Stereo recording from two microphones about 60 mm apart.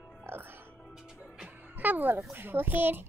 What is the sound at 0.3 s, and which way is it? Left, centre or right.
Music, right.